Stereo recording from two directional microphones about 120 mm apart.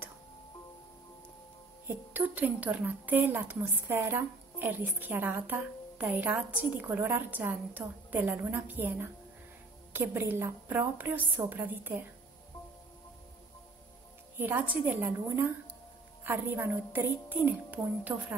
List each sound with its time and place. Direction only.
2.1 s a woman's voice: 15° right (ahead or behind)
14.4 s a woman's voice: 15° right (ahead or behind)